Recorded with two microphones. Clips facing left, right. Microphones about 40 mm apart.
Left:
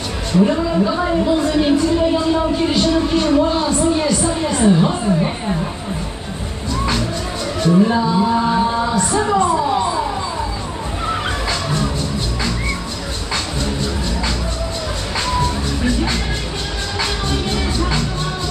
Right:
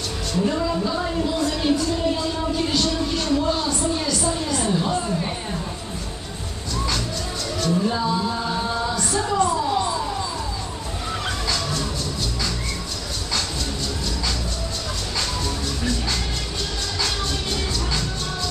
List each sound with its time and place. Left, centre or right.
0.3 s a woman's voice: left
7.6 s speech: left
11.1 s fowl: left
15.1 s music: left